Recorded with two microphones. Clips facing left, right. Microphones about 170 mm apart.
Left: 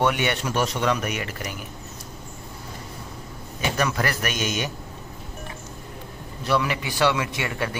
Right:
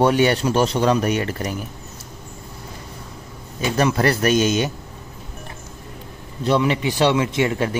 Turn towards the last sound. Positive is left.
turn(degrees=-25)  # may be behind; listen again after turning